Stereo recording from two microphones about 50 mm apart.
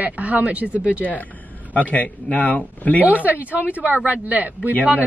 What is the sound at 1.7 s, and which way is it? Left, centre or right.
Speech, left.